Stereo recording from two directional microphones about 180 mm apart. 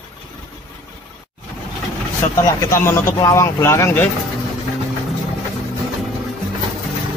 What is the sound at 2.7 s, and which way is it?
Speech, 15° left (ahead or behind).